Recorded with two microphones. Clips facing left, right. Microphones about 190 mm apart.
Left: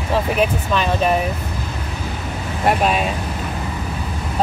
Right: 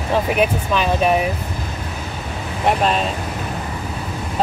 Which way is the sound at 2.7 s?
5° left (ahead or behind).